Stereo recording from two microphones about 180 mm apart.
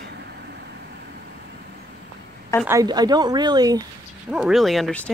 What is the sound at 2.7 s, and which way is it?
Speech, 20° right (ahead or behind).